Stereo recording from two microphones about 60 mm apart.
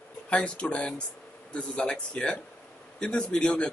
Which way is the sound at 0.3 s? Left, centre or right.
Centre.